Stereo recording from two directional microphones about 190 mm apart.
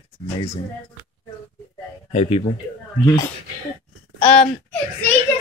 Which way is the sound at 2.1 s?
30° left (ahead or behind).